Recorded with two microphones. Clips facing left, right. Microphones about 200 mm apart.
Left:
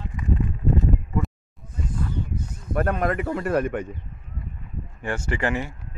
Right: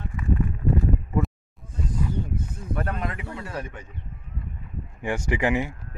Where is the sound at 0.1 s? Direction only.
20° left (ahead or behind).